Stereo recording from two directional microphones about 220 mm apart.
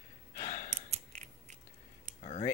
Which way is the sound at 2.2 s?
30° left (ahead or behind).